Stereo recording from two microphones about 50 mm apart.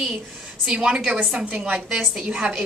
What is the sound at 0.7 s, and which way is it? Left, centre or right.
Speech, centre.